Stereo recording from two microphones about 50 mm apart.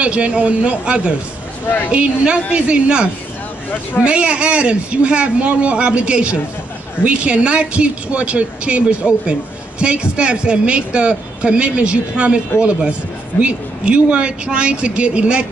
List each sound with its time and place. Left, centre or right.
0.0 s speech: right
13.4 s speech: right